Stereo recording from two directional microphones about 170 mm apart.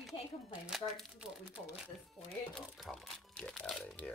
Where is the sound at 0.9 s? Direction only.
5° right (ahead or behind).